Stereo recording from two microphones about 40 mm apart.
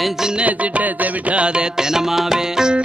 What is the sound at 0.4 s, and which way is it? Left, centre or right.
Music, right.